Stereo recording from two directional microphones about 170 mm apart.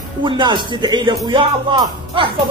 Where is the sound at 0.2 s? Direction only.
30° right (ahead or behind).